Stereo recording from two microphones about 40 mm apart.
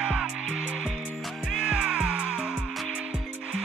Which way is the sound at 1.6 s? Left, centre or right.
Right.